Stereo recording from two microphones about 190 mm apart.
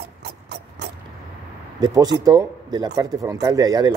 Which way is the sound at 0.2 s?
65° right (ahead or behind).